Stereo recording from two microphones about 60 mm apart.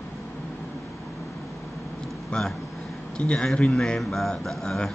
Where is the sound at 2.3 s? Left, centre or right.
Centre.